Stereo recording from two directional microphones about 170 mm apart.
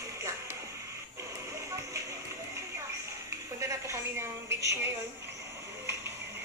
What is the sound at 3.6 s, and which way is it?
A woman's voice, 15° right (ahead or behind).